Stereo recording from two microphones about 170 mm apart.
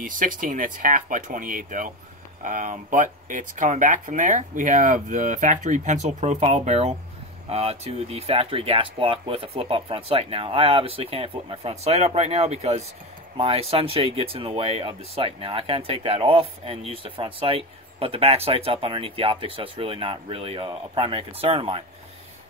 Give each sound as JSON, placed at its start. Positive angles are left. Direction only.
{"t": 0.0, "sound": "speech", "side_deg": -55}